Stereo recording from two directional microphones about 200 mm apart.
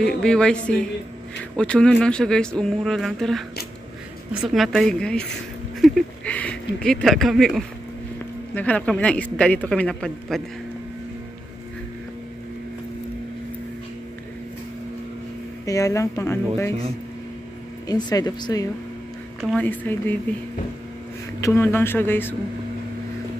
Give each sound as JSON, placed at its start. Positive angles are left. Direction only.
{"t": 0.0, "sound": "speech", "side_deg": 5}
{"t": 15.6, "sound": "a woman's voice", "side_deg": 15}
{"t": 17.8, "sound": "speech", "side_deg": 20}
{"t": 19.4, "sound": "a woman's voice", "side_deg": 10}
{"t": 21.4, "sound": "a woman's voice", "side_deg": 15}